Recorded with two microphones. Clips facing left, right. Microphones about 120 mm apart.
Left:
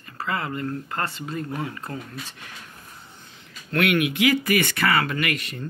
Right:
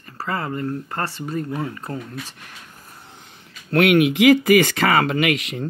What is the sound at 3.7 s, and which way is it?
Speech, 55° right (ahead or behind).